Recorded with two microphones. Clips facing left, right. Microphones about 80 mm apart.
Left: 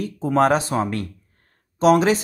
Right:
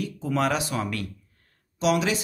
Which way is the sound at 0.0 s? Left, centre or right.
Left.